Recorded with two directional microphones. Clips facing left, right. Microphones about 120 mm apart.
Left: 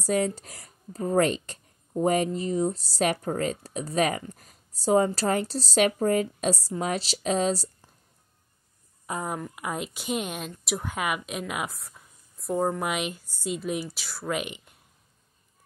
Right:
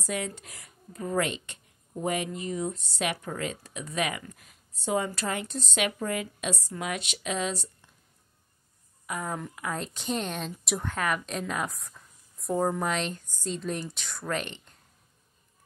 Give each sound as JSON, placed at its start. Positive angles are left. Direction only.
{"t": 0.0, "sound": "speech", "side_deg": 35}
{"t": 9.0, "sound": "speech", "side_deg": 30}
{"t": 9.6, "sound": "speech", "side_deg": 15}